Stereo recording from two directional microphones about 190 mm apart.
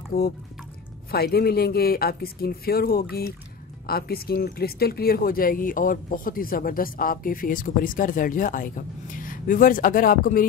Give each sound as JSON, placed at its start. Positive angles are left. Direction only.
{"t": 1.1, "sound": "a woman's voice", "side_deg": 55}